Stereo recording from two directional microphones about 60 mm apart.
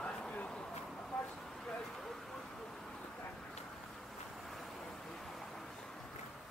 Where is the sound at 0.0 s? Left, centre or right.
Centre.